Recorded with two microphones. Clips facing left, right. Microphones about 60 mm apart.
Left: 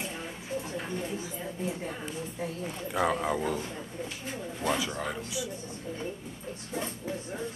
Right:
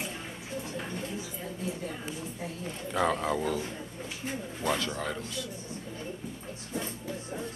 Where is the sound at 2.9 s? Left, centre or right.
Centre.